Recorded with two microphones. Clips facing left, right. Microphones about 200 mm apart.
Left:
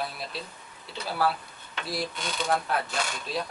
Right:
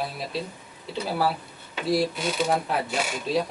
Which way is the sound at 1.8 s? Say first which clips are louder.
Right 9 dB; 5° right (ahead or behind).